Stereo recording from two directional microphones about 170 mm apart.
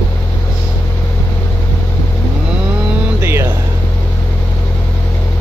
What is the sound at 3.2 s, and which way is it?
Music, 15° right (ahead or behind).